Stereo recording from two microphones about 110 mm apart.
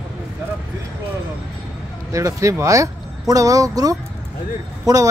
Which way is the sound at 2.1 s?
30° right (ahead or behind).